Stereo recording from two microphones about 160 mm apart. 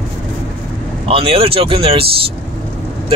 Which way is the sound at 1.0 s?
35° right (ahead or behind).